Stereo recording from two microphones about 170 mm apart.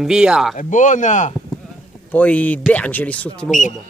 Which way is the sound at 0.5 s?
50° left (ahead or behind).